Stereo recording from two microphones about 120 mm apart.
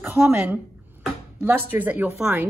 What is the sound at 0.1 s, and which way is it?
A woman's voice, 20° right (ahead or behind).